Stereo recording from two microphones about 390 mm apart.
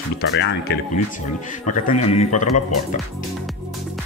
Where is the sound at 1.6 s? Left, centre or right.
Centre.